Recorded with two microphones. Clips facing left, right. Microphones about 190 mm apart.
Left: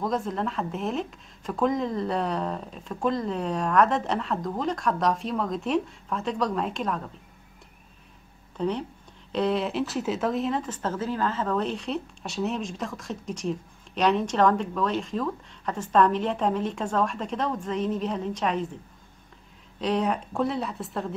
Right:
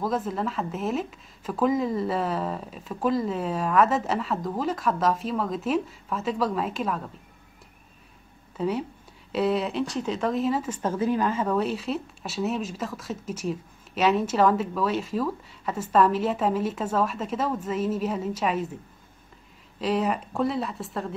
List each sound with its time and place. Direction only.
0.0 s speech: 5° right (ahead or behind)
8.5 s speech: 5° right (ahead or behind)
19.8 s speech: 5° right (ahead or behind)